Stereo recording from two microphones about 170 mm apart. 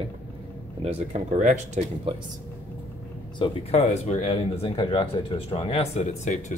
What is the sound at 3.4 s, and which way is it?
Speech, 40° left (ahead or behind).